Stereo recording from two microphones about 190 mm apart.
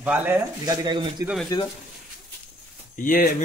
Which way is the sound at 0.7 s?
25° right (ahead or behind).